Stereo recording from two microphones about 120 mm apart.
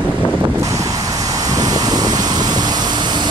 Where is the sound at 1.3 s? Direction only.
30° right (ahead or behind).